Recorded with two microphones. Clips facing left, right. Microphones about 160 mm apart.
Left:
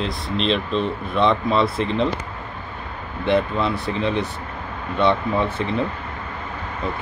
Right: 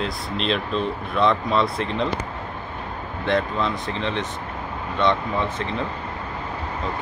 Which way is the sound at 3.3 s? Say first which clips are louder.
Left 3 dB; 5° left (ahead or behind).